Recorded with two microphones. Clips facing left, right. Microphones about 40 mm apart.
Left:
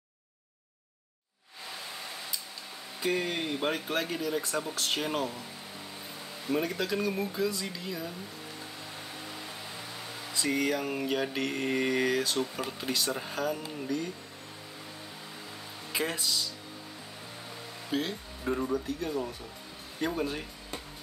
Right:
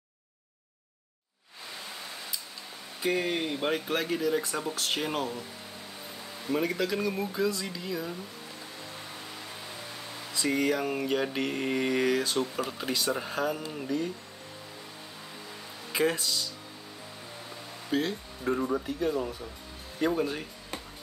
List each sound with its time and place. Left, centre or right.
3.0 s speech: centre
3.5 s mantra: centre
6.8 s mantra: centre
10.3 s mantra: centre
13.7 s speech: centre
15.9 s mantra: centre
17.9 s mantra: centre
18.7 s speech: centre
20.0 s mantra: centre